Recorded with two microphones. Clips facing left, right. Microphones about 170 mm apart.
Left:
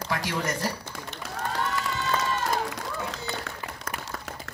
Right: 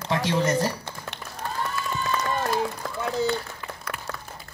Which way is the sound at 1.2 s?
85° left.